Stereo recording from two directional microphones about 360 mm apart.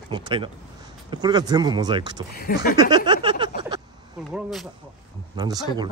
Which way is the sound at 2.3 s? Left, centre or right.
Left.